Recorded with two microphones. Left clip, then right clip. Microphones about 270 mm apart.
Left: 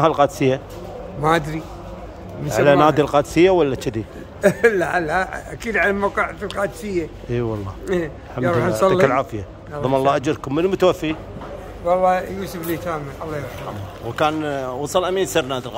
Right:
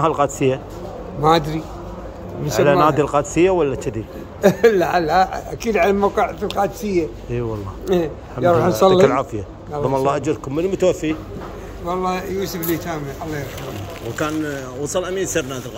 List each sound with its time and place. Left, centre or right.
0.0 s a man's voice: centre
9.0 s a man's voice: left
14.1 s speech: centre